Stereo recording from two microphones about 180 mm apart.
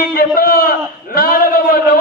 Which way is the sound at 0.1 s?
55° left (ahead or behind).